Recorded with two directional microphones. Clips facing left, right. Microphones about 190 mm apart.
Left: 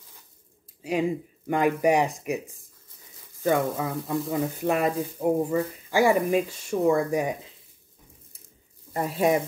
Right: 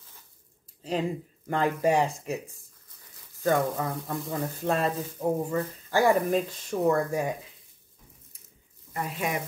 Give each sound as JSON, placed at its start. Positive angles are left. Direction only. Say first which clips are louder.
{"t": 1.5, "sound": "speech", "louder": "left 3 dB", "side_deg": 15}
{"t": 3.4, "sound": "speech", "louder": "left 1 dB", "side_deg": 5}
{"t": 4.6, "sound": "speech", "louder": "left 1 dB", "side_deg": 15}
{"t": 8.9, "sound": "speech", "louder": "left 8 dB", "side_deg": 35}